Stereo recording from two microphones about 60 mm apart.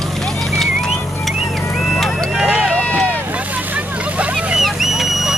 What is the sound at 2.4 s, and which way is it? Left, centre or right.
Run, centre.